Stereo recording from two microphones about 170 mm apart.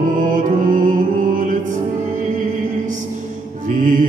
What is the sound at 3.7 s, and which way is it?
Music, 50° right (ahead or behind).